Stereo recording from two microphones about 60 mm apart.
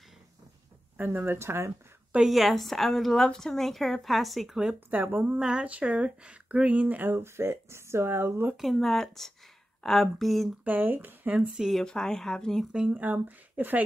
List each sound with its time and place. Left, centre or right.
0.9 s speech: right
2.1 s speech: centre
4.7 s speech: right
5.2 s speech: centre; by 8.5 s right
8.5 s speech: centre
10.6 s speech: right
11.8 s speech: centre
12.7 s speech: right